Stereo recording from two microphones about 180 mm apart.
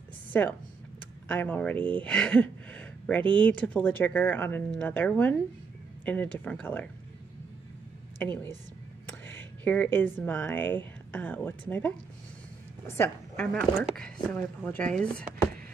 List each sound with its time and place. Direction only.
0.3 s speech: 10° left (ahead or behind)
8.2 s speech: 10° left (ahead or behind)
9.3 s a sound: 10° left (ahead or behind)
9.9 s speech: 10° left (ahead or behind)
12.8 s speech: 15° left (ahead or behind)